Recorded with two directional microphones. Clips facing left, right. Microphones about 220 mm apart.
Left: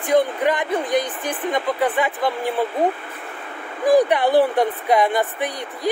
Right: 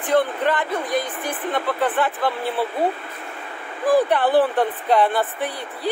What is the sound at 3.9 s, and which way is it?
A woman's voice, 15° left (ahead or behind).